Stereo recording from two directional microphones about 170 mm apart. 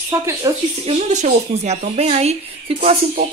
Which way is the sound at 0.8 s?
40° right (ahead or behind).